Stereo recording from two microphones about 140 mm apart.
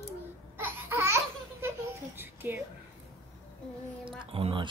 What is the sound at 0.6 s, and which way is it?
Laughter, 15° right (ahead or behind).